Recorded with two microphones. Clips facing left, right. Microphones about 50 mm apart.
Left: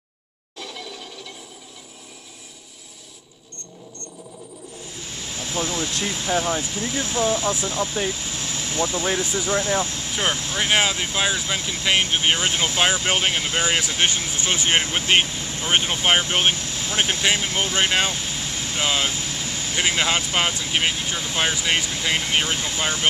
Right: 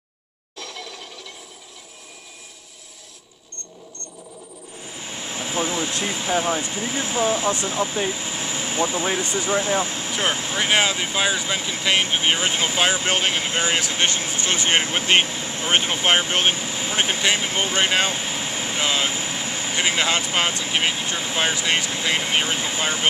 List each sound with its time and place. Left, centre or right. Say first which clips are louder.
0.6 s a sound: even; centre
4.8 s vehicle: right 4 dB; right
6.7 s speech: right 1 dB; centre
10.7 s speech: even; centre
14.8 s speech: right 1 dB; centre
15.2 s vehicle: right 2 dB; centre
15.7 s speech: even; centre
16.6 s speech: right 2 dB; centre
16.9 s speech: even; centre
18.1 s vehicle: right 2 dB; centre
18.8 s speech: even; centre
19.1 s vehicle: right 2 dB; centre
20.3 s speech: even; centre